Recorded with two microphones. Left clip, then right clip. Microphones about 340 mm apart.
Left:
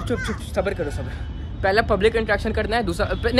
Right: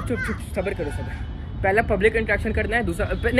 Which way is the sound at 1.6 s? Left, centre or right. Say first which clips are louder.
Left 1 dB; centre.